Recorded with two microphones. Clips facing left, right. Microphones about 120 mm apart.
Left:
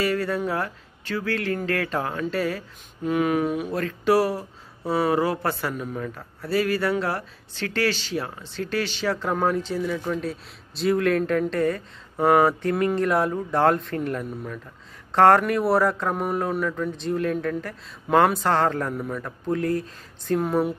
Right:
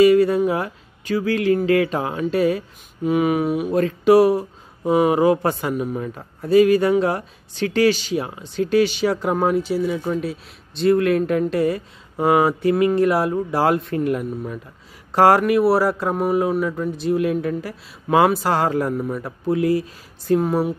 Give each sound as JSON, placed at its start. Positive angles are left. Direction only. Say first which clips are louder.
{"t": 0.0, "sound": "a man's voice", "louder": "right 10 dB", "side_deg": -15}
{"t": 10.2, "sound": "a man's voice", "louder": "right 3 dB", "side_deg": 0}